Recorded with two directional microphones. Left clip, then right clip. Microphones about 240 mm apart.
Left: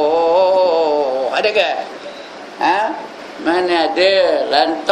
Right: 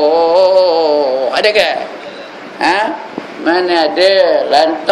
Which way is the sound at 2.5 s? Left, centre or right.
Centre.